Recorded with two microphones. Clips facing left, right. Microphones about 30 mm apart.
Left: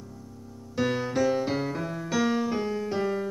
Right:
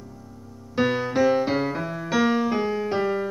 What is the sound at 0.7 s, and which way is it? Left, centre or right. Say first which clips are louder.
Music: right 4 dB; centre.